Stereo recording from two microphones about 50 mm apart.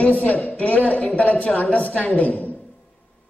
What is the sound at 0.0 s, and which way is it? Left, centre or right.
A woman's voice, left.